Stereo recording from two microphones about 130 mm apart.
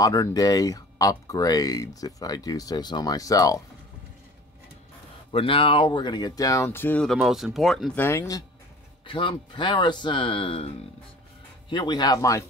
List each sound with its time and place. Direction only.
0.0 s speech: 30° left (ahead or behind)
5.3 s speech: 45° left (ahead or behind); by 7.0 s 15° left (ahead or behind)
7.0 s speech: centre (ahead or behind)
7.9 s speech: 20° left (ahead or behind)
9.0 s speech: 40° left (ahead or behind)
11.7 s speech: 35° left (ahead or behind)